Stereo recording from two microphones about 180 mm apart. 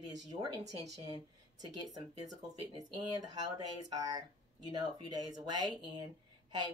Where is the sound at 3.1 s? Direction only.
20° right (ahead or behind).